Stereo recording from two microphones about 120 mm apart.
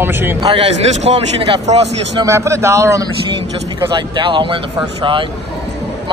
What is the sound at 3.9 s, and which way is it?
A man's voice, 40° right (ahead or behind).